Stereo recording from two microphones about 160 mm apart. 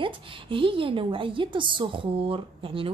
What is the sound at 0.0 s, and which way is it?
A woman's voice, 35° right (ahead or behind).